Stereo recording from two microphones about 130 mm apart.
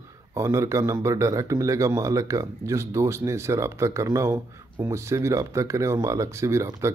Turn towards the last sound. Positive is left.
turn(degrees=-20)  # may be behind; listen again after turning